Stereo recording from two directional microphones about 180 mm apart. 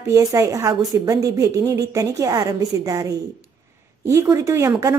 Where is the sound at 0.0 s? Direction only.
20° right (ahead or behind).